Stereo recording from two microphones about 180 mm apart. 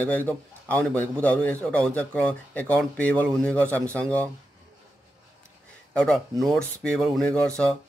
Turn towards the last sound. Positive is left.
turn(degrees=5)  # may be behind; listen again after turning